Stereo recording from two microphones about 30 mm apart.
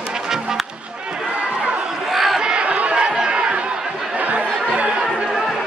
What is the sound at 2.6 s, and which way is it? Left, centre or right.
Chatter, right.